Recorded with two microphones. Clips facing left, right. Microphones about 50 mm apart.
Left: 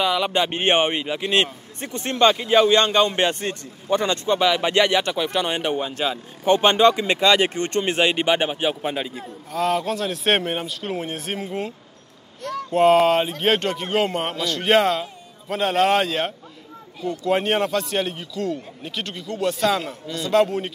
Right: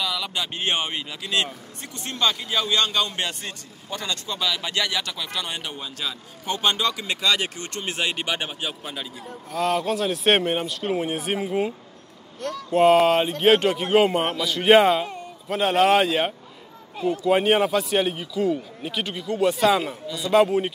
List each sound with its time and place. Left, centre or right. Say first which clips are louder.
0.0 s a man's voice: left 7 dB; left
9.5 s a man's voice: left 1 dB; centre
17.3 s a man's voice: right 1 dB; centre